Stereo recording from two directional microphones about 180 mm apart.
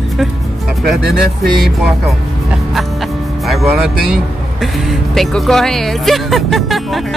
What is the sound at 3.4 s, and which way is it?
Speech, centre (ahead or behind).